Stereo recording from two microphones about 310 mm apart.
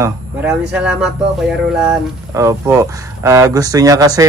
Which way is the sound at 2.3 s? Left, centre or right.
Centre.